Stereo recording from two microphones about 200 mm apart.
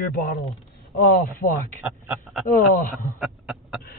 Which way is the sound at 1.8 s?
Centre (ahead or behind).